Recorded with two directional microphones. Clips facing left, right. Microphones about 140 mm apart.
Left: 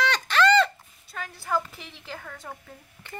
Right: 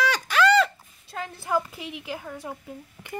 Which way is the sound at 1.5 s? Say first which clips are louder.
Right 2 dB; 15° right (ahead or behind).